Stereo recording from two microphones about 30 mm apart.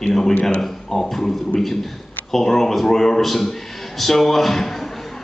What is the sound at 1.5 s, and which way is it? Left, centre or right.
Speech, left.